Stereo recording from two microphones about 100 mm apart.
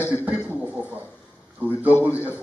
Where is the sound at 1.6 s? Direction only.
15° right (ahead or behind).